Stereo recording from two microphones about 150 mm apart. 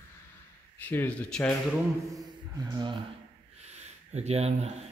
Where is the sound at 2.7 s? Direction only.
30° right (ahead or behind).